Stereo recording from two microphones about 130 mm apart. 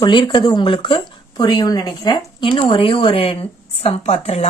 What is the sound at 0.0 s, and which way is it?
A woman's voice, 35° left (ahead or behind).